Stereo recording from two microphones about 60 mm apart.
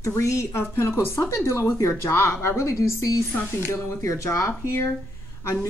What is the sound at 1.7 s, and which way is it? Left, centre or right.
Speech, left.